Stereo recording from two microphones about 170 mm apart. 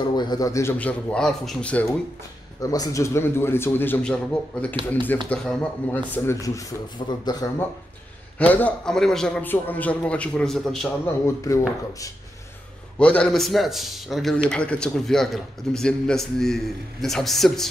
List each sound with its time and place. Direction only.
0.0 s a man's voice: 25° left (ahead or behind); by 1.9 s 5° left (ahead or behind)
2.6 s a man's voice: 20° left (ahead or behind)
8.4 s a man's voice: 10° left (ahead or behind)
11.1 s a man's voice: 15° left (ahead or behind)
13.0 s a man's voice: 5° left (ahead or behind)